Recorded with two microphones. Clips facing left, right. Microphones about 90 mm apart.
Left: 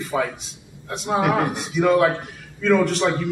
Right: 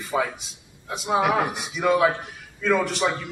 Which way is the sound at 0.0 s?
5° right (ahead or behind).